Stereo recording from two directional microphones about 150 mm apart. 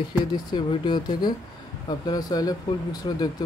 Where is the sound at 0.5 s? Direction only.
30° left (ahead or behind).